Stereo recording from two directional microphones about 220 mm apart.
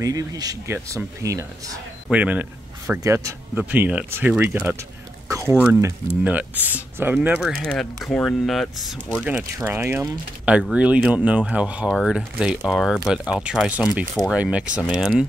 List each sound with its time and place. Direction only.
0.0 s speech: 15° right (ahead or behind)